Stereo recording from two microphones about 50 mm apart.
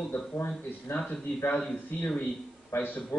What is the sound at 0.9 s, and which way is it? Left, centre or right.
Speech, left.